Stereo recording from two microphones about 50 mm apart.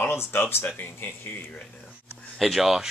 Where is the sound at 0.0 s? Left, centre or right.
Left.